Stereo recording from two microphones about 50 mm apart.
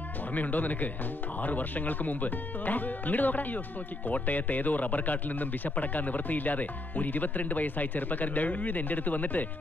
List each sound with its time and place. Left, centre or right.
0.3 s speech: left